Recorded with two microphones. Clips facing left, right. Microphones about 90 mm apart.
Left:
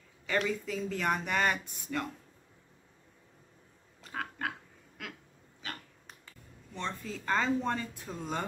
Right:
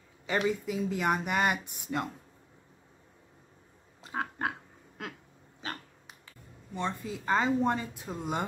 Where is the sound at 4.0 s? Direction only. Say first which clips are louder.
Right 4 dB; 25° right (ahead or behind).